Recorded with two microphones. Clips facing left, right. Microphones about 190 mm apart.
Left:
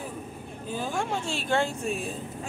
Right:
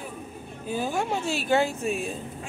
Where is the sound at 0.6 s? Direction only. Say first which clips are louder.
Right 3 dB; 10° right (ahead or behind).